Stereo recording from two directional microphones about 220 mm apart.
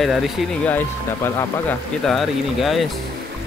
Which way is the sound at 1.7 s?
Centre (ahead or behind).